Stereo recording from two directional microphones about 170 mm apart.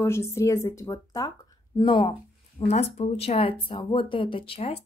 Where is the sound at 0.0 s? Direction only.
15° left (ahead or behind).